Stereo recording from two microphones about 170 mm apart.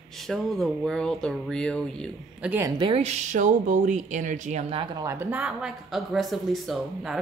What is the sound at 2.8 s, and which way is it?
Speech, 40° right (ahead or behind).